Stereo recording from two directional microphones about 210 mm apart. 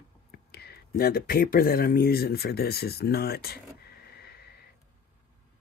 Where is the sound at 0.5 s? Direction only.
50° left (ahead or behind).